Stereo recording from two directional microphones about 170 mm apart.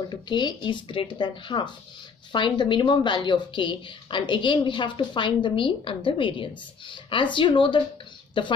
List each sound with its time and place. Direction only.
0.1 s a woman's voice: 25° left (ahead or behind)